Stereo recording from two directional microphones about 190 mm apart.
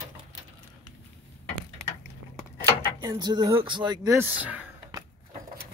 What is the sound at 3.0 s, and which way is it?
Speech, 20° right (ahead or behind).